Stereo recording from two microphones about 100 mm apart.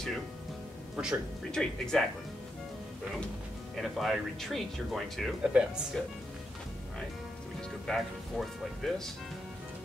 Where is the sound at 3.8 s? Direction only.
Centre (ahead or behind).